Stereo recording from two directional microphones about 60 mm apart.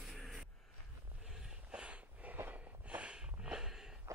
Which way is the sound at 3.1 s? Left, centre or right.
Centre.